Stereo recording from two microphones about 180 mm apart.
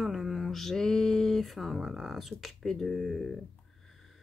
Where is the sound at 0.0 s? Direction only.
Centre (ahead or behind).